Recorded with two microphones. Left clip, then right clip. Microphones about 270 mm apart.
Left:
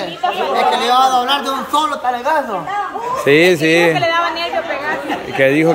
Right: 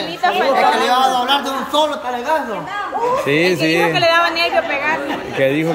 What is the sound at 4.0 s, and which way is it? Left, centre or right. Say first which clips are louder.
Chatter: right 2 dB; right.